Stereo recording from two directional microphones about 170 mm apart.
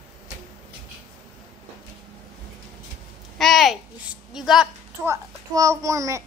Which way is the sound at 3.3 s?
Centre (ahead or behind).